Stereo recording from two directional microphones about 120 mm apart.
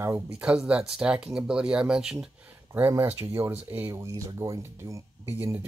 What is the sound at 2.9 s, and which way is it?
Speech, 20° right (ahead or behind).